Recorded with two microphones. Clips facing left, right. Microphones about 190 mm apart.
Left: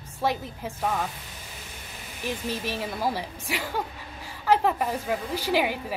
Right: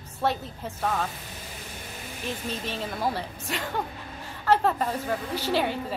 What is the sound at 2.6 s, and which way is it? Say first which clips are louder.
Speech: even; 10° left (ahead or behind).